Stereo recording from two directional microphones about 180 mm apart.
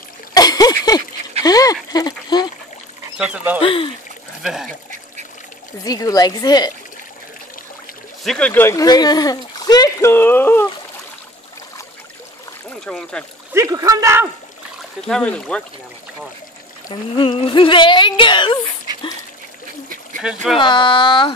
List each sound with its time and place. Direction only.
0.3 s splash: 20° left (ahead or behind)
1.4 s a sound: 20° left (ahead or behind)
3.2 s speech: 5° right (ahead or behind)
3.6 s speech: 30° left (ahead or behind)
4.4 s speech: 5° right (ahead or behind)
5.9 s speech: 20° left (ahead or behind)
8.2 s speech: 5° left (ahead or behind)
12.8 s speech: 5° left (ahead or behind)
13.5 s speech: 15° right (ahead or behind)
15.0 s speech: 5° left (ahead or behind)
16.9 s speech: 30° left (ahead or behind)
20.5 s speech: 25° left (ahead or behind)